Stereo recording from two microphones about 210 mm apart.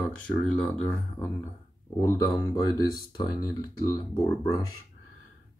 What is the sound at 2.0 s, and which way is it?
Speech, 15° left (ahead or behind).